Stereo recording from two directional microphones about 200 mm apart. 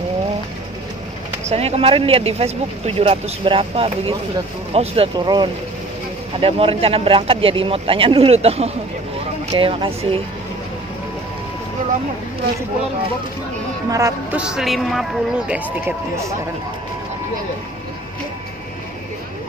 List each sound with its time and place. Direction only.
1.5 s speech: 30° right (ahead or behind)
13.8 s music: 15° right (ahead or behind)
14.4 s a man's voice: 5° right (ahead or behind)